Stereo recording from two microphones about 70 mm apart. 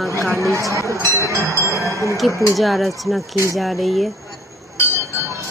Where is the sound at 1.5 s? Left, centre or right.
Left.